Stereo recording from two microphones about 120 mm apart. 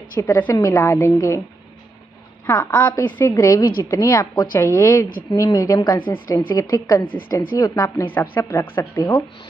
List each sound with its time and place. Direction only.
0.2 s a woman's voice: 20° left (ahead or behind)
2.4 s a woman's voice: 15° left (ahead or behind)
8.1 s a woman's voice: 20° left (ahead or behind)